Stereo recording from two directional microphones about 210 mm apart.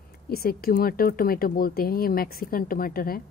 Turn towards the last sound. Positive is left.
turn(degrees=45)  # may be behind; listen again after turning